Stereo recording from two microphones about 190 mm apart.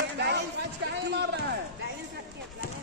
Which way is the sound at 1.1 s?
65° right (ahead or behind).